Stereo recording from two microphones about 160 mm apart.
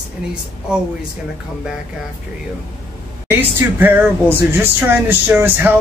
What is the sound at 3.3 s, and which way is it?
Speech, 10° right (ahead or behind).